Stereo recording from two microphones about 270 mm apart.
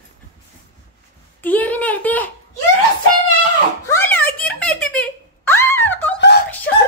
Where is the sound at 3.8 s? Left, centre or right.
Centre.